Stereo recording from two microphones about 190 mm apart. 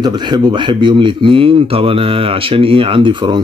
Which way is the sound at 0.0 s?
25° right (ahead or behind).